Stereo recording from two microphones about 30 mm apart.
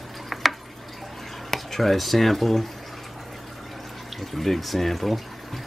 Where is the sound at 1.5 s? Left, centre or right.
Centre.